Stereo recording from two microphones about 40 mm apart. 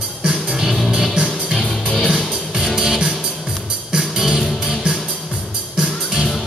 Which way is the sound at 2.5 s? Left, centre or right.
Centre.